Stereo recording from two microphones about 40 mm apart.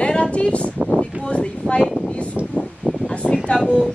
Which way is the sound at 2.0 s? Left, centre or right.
Left.